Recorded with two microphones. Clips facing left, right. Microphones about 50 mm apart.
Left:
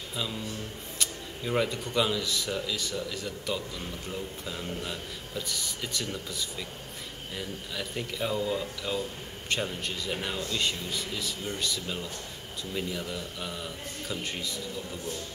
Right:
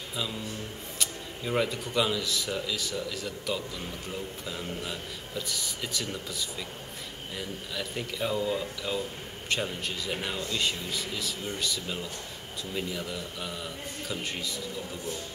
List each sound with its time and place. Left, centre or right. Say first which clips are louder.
0.1 s a man's voice: even; centre